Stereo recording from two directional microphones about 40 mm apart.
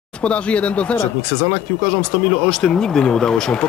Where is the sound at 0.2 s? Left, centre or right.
Left.